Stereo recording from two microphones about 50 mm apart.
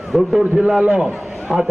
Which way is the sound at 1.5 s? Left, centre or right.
Centre.